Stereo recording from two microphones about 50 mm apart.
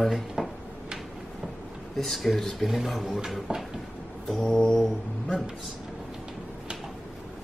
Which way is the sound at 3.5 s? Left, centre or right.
Centre.